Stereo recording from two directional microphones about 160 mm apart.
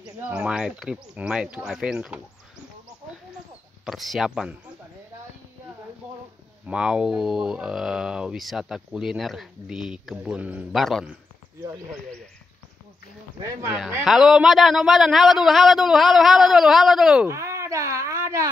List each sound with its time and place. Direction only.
0.0 s speech: 5° right (ahead or behind)
3.8 s speech: centre (ahead or behind)
6.6 s speech: 5° right (ahead or behind)
13.4 s speech: 15° right (ahead or behind)
14.0 s speech: centre (ahead or behind)
17.3 s speech: 15° right (ahead or behind)